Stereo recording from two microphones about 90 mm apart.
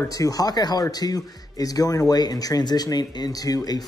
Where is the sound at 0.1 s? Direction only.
40° left (ahead or behind).